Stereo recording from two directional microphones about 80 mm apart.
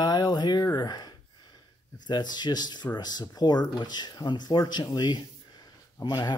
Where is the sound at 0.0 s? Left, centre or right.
Left.